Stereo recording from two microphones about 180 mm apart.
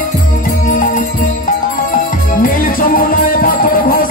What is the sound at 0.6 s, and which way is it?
Music, 50° left (ahead or behind).